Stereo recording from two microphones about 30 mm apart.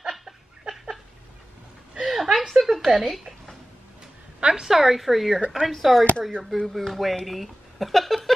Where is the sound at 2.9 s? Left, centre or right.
Centre.